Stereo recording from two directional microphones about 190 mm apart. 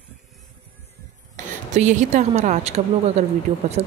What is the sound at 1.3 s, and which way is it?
A woman's voice, 40° right (ahead or behind).